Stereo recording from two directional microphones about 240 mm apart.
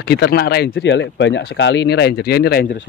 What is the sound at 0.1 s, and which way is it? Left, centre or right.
Speech, left.